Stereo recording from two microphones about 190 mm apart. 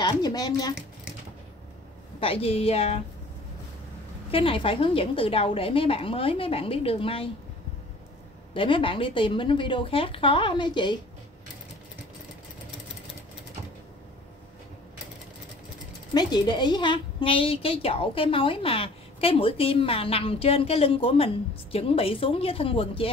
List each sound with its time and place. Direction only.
0.0 s a woman's voice: 20° left (ahead or behind)
2.1 s a woman's voice: 30° left (ahead or behind)
4.3 s a woman's voice: 30° left (ahead or behind)
8.5 s a woman's voice: 25° left (ahead or behind)
16.1 s a woman's voice: 20° left (ahead or behind)